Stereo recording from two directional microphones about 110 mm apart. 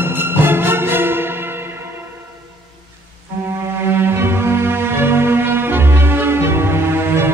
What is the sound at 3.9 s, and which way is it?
Cello, 20° right (ahead or behind).